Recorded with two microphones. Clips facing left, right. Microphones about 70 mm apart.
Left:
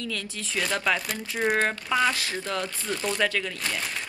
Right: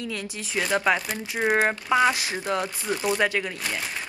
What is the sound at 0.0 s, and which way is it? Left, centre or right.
Speech, right.